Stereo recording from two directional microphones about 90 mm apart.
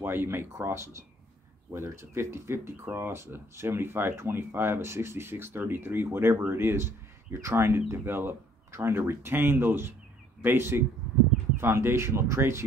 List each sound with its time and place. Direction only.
0.0 s speech: 25° right (ahead or behind)